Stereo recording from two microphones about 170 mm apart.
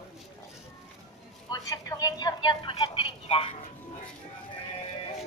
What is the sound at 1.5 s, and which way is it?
A woman's voice, 20° left (ahead or behind).